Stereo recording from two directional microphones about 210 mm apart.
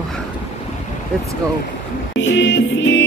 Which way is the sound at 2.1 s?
60° left (ahead or behind).